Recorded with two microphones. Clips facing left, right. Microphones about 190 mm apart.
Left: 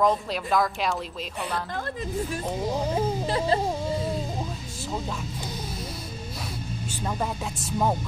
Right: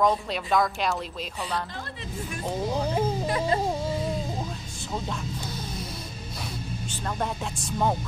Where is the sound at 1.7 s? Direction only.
50° left (ahead or behind).